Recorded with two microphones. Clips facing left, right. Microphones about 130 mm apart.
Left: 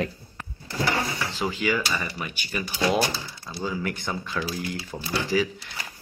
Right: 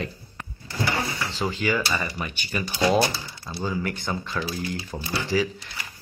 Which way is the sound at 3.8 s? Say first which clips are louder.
Right 1 dB; centre (ahead or behind).